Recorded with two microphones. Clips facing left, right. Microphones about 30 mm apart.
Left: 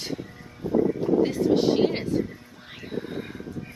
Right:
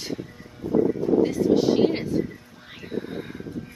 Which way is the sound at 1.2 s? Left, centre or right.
Centre.